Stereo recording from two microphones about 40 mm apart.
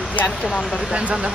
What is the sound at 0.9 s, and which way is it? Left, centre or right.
Speech, right.